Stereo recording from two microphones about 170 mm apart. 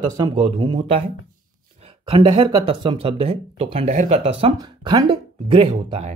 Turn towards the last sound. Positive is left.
turn(degrees=-40)  # may be behind; listen again after turning